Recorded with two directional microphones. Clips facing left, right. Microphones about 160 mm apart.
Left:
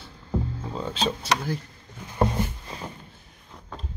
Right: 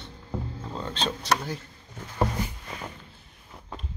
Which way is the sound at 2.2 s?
25° left (ahead or behind).